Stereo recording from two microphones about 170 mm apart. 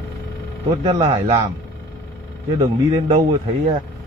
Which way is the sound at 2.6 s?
35° right (ahead or behind).